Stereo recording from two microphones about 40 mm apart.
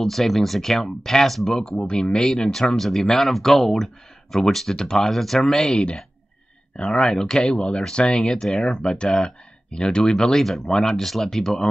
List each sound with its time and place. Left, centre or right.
0.0 s speech: centre
1.7 s speech: left
2.8 s speech: centre
5.7 s speech: left
8.5 s speech: centre
8.8 s speech: left